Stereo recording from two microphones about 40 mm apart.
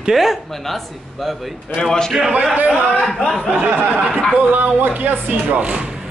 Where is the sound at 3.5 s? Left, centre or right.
Right.